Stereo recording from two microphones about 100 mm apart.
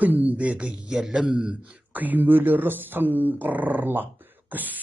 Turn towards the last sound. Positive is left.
turn(degrees=-15)  # may be behind; listen again after turning